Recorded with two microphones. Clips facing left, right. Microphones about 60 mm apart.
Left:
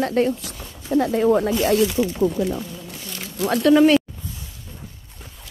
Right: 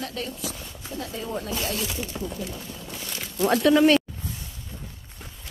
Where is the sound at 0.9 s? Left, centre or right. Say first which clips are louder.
Left 15 dB; left.